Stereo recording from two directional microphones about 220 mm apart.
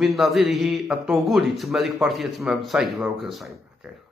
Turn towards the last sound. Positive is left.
turn(degrees=0)  # may be behind; listen again after turning